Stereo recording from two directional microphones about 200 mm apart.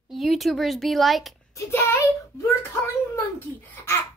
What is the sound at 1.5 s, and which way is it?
Speech, 15° left (ahead or behind).